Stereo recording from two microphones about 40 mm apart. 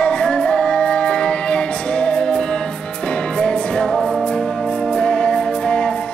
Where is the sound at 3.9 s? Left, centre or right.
Centre.